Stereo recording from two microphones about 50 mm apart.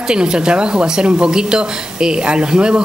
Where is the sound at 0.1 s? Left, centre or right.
Centre.